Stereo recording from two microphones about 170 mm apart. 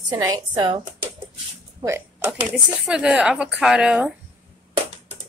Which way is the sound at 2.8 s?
5° right (ahead or behind).